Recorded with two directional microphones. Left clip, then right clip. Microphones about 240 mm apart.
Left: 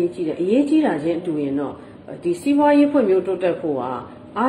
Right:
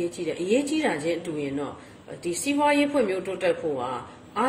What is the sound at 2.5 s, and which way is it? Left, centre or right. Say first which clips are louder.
Speech: left 6 dB; right.